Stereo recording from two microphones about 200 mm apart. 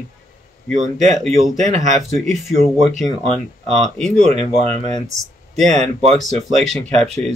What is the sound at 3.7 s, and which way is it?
Speech, centre (ahead or behind).